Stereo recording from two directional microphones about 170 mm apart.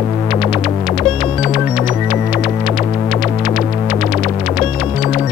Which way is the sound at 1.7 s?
25° left (ahead or behind).